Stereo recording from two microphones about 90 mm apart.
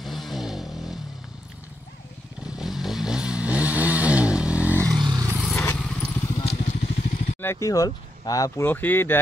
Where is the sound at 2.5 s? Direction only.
5° right (ahead or behind).